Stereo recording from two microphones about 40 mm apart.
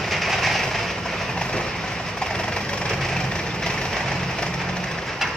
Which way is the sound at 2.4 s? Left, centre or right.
Centre.